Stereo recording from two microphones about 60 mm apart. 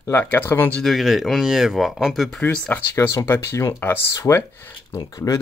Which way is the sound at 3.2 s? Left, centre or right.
Left.